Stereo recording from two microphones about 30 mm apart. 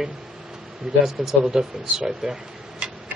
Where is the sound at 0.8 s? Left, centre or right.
Centre.